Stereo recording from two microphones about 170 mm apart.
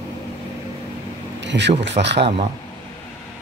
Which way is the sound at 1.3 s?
90° right.